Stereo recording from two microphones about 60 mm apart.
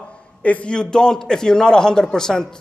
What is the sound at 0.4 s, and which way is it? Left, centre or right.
Speech, left.